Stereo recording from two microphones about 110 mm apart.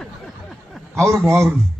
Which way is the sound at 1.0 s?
25° right (ahead or behind).